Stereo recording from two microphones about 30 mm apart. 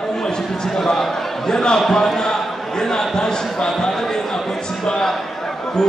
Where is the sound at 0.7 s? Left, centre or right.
Centre.